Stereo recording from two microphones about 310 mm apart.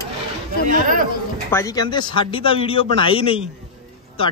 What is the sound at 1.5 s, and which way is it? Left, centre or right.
Speech, centre.